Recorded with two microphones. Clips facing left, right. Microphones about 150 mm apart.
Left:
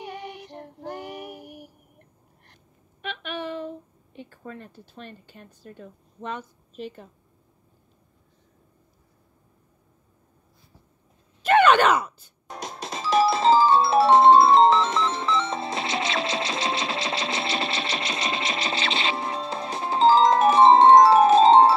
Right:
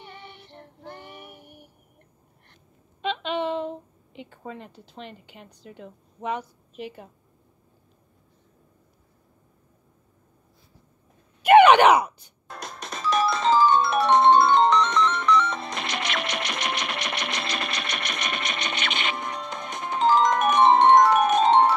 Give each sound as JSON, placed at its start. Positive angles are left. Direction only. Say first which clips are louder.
{"t": 0.5, "sound": "child singing", "louder": "left 6 dB", "side_deg": 40}
{"t": 3.0, "sound": "a sound", "louder": "right 6 dB", "side_deg": -20}
{"t": 4.6, "sound": "a woman's voice", "louder": "right 1 dB", "side_deg": -15}
{"t": 11.4, "sound": "groan", "louder": "right 4 dB", "side_deg": -10}
{"t": 12.4, "sound": "music", "louder": "left 3 dB", "side_deg": 20}